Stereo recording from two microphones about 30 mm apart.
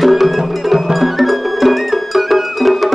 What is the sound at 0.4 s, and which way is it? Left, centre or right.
Music, centre.